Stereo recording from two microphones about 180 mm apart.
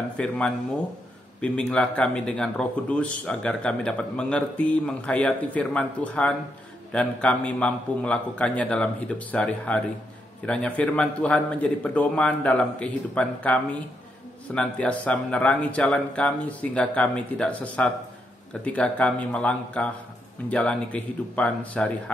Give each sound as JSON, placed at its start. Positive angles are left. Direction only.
{"t": 0.2, "sound": "speech", "side_deg": 5}
{"t": 1.4, "sound": "speech", "side_deg": 5}